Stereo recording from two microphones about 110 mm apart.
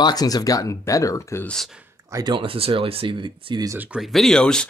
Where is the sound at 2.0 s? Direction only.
30° right (ahead or behind).